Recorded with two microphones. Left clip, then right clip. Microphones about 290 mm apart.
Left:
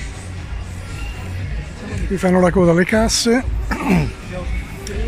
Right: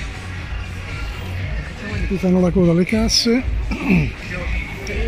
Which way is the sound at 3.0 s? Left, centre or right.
Left.